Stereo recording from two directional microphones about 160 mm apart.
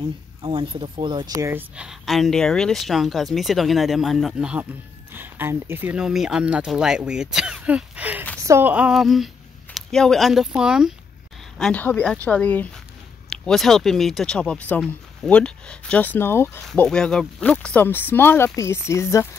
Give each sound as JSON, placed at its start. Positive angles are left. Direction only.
{"t": 0.4, "sound": "speech", "side_deg": -35}
{"t": 1.5, "sound": "speech", "side_deg": -10}
{"t": 11.5, "sound": "speech", "side_deg": 5}